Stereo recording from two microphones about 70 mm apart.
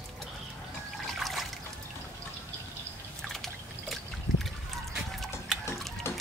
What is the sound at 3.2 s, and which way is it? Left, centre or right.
Drip, centre.